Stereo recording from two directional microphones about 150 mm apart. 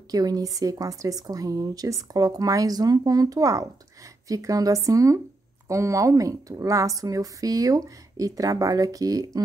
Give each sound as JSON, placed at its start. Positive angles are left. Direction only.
{"t": 0.1, "sound": "a woman's voice", "side_deg": -25}